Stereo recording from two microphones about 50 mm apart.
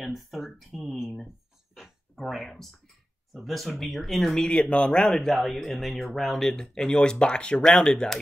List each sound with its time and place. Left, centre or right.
0.0 s speech: centre
2.2 s speech: centre
6.5 s speech: centre